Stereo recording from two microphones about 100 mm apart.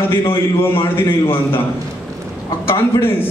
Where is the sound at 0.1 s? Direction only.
25° left (ahead or behind).